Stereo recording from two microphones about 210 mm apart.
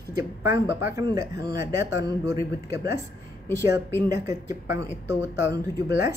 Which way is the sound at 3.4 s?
10° left (ahead or behind).